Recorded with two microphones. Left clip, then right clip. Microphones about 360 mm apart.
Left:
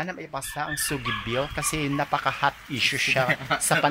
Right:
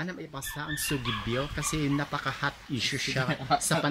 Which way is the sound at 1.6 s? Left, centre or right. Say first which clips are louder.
Left 4 dB; centre.